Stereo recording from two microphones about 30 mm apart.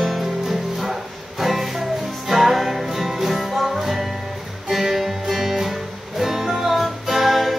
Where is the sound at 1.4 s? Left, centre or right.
Centre.